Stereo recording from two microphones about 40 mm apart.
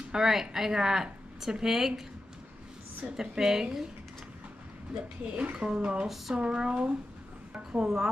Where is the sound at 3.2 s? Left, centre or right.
Centre.